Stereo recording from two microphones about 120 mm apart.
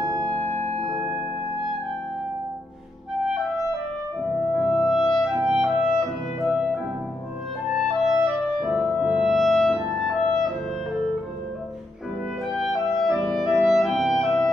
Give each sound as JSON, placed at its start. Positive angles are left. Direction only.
{"t": 0.0, "sound": "music", "side_deg": -30}
{"t": 0.3, "sound": "music", "side_deg": 15}
{"t": 0.6, "sound": "music", "side_deg": -65}
{"t": 0.8, "sound": "music", "side_deg": -5}
{"t": 4.6, "sound": "clarinet", "side_deg": 0}
{"t": 12.5, "sound": "clarinet", "side_deg": 0}